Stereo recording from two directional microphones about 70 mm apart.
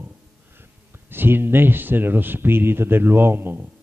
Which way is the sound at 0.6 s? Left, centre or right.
Right.